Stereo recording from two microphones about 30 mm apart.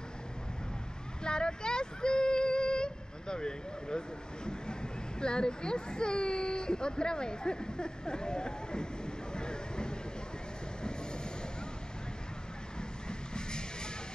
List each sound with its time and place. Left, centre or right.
1.2 s female singing: left
5.2 s speech: left
10.8 s train: left
13.3 s music: left